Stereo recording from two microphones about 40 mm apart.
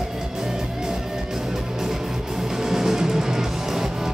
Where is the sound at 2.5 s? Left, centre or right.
Centre.